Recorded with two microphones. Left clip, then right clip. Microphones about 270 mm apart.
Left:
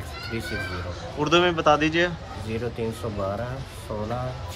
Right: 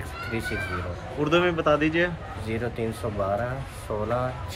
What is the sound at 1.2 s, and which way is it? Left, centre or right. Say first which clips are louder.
Speech: left 2 dB; centre.